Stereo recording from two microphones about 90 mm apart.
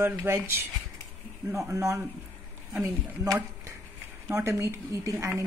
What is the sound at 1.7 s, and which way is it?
Speech, 35° right (ahead or behind).